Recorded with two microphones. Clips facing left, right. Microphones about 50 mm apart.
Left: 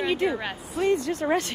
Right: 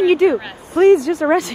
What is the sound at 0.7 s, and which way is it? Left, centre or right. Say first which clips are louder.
Speech: right 13 dB; right.